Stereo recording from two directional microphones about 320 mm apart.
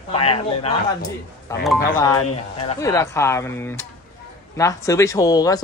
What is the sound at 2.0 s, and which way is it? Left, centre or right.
Speech, centre.